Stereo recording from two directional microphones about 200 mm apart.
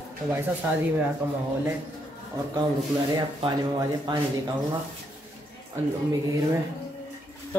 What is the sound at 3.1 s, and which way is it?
Speech, 20° right (ahead or behind).